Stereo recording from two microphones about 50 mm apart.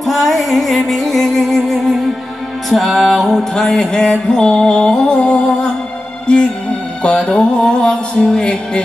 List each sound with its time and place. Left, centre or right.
0.0 s music: centre